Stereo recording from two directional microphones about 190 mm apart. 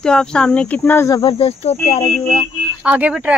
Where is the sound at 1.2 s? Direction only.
30° left (ahead or behind).